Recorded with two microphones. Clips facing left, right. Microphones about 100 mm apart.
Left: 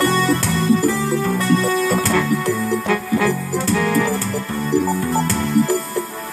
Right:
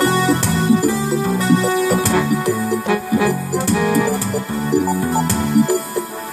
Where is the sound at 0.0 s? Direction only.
15° right (ahead or behind).